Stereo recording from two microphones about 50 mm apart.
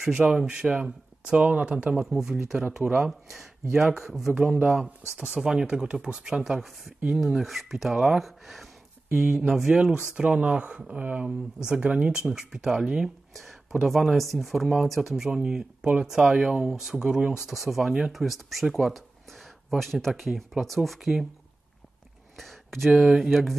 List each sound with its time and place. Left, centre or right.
0.3 s speech: centre
2.0 s speech: centre
5.1 s speech: centre
10.1 s speech: right
13.3 s speech: centre
15.2 s speech: centre
22.4 s a sound: centre
22.8 s speech: centre